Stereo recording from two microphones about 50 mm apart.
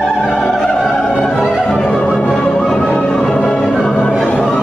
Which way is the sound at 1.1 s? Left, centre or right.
Centre.